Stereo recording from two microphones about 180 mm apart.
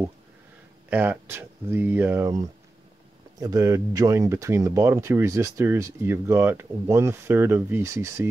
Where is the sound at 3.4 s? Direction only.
20° right (ahead or behind).